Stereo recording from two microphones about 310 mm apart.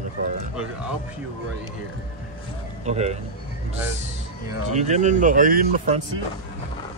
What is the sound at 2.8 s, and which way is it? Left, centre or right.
Speech, right.